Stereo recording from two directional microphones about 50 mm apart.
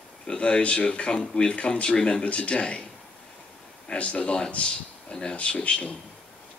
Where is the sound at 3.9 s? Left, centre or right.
Left.